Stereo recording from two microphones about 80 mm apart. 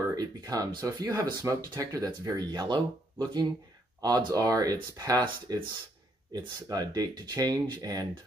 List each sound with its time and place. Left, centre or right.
0.1 s speech: right
2.2 s speech: right